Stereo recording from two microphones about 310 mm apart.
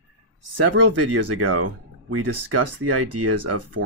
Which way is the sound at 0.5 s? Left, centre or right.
Right.